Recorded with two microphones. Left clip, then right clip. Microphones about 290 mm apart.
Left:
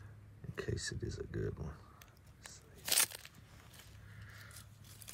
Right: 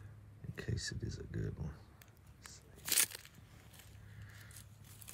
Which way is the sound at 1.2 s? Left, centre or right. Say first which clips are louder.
Left 4 dB; left.